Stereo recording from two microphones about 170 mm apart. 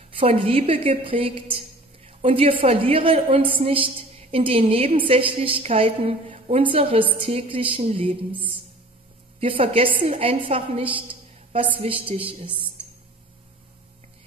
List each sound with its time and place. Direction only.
0.1 s a woman's voice: 35° right (ahead or behind)
9.4 s a woman's voice: 30° right (ahead or behind)